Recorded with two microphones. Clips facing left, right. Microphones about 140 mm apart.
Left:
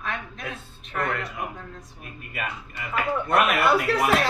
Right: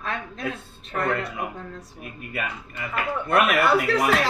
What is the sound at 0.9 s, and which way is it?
Speech, 40° right (ahead or behind).